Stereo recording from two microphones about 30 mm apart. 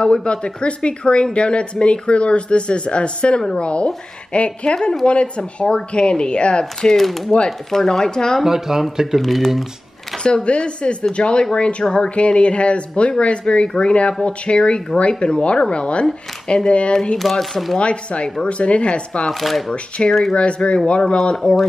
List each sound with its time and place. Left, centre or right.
0.0 s speech: left
3.3 s speech: left
3.6 s speech: left
5.4 s speech: left
7.0 s speech: centre; by 8.4 s left
8.5 s speech: centre
9.2 s speech: centre
10.2 s speech: left
17.2 s speech: centre
17.7 s speech: left
19.7 s speech: left